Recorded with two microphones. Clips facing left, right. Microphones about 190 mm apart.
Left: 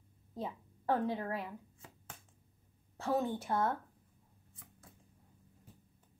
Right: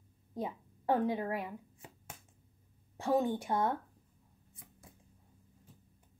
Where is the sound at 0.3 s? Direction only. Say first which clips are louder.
Right 3 dB; 15° right (ahead or behind).